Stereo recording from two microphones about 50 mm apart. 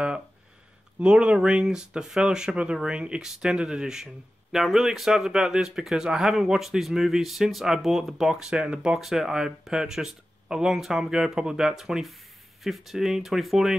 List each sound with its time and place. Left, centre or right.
0.9 s speech: centre
8.5 s speech: centre
8.9 s speech: centre